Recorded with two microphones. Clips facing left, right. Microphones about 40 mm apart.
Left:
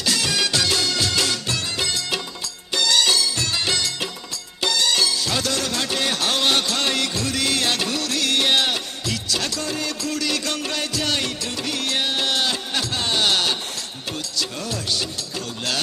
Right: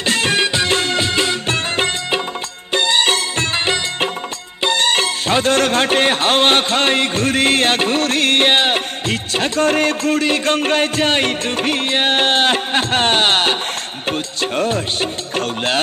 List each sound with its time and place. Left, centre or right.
0.0 s music: right